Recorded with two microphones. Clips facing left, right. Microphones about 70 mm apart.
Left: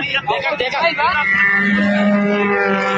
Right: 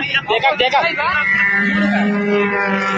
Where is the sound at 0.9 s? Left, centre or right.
Centre.